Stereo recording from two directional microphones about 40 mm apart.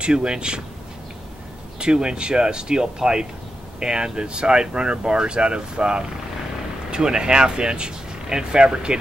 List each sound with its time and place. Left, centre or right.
0.0 s speech: right
1.8 s speech: right